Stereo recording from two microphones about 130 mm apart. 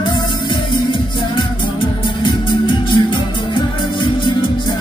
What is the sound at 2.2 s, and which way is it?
Music, 40° left (ahead or behind).